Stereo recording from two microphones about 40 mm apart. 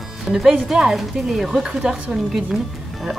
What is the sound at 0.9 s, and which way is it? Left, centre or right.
A woman's voice, centre.